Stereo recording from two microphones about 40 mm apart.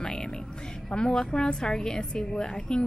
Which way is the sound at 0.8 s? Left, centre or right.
Centre.